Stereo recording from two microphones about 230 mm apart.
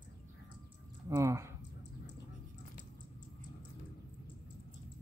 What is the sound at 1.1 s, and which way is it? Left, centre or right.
Speech, centre.